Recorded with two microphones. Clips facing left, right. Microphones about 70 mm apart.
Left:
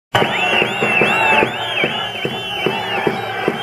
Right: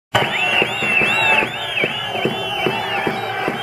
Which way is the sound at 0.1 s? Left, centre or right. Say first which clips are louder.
Left 3 dB; centre.